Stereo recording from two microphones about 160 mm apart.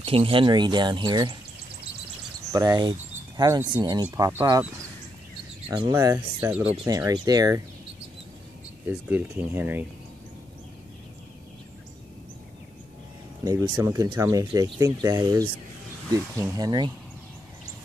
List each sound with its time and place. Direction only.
0.0 s speech: 35° right (ahead or behind)
2.5 s speech: 25° right (ahead or behind)
5.7 s speech: 20° right (ahead or behind)
8.8 s speech: 10° right (ahead or behind)
13.4 s speech: 20° right (ahead or behind)